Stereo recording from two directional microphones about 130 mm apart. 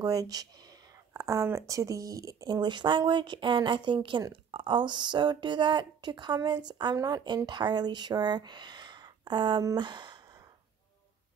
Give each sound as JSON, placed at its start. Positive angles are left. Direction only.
{"t": 0.0, "sound": "speech", "side_deg": -30}